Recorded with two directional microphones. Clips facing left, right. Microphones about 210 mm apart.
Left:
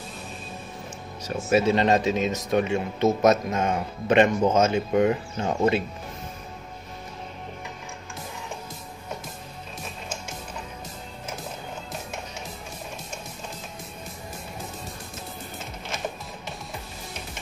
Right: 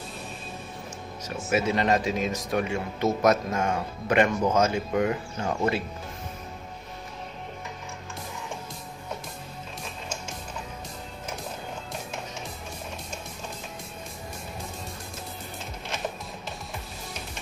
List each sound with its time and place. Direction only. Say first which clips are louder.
1.2 s speech: left 5 dB; 30° left (ahead or behind)